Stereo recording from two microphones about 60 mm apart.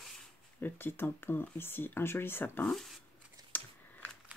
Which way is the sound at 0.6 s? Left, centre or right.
Left.